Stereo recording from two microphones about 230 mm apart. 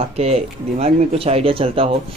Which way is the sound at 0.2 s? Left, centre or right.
Right.